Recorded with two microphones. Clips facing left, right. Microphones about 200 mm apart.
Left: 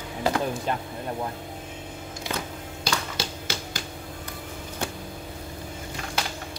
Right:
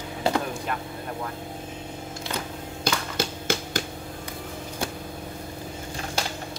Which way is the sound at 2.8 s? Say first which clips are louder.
Right 3 dB; 50° right (ahead or behind).